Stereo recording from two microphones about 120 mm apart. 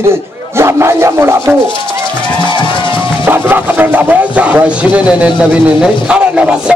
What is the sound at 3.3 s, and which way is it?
Speech, 15° right (ahead or behind).